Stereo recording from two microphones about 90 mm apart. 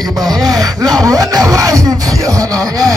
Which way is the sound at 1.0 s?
40° right (ahead or behind).